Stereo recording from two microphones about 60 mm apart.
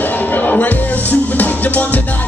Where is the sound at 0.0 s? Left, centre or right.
Left.